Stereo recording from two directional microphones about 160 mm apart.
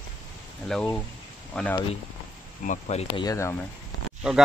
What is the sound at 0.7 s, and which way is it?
Speech, 5° left (ahead or behind).